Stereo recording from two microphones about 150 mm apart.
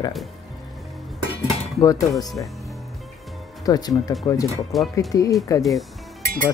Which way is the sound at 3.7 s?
25° left (ahead or behind).